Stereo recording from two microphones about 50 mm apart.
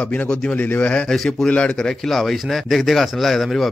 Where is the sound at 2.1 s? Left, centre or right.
Centre.